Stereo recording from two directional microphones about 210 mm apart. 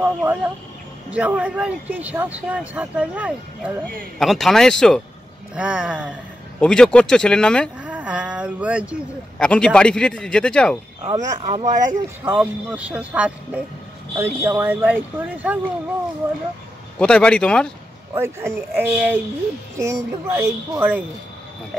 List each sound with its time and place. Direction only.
0.0 s a man's voice: 10° right (ahead or behind)
7.9 s a sound: 5° right (ahead or behind)
9.4 s a man's voice: 5° left (ahead or behind)
11.0 s speech: 20° right (ahead or behind)
11.2 s speech: 30° right (ahead or behind)
12.3 s speech: 5° right (ahead or behind)
17.0 s a man's voice: 5° left (ahead or behind)
18.1 s speech: 10° right (ahead or behind)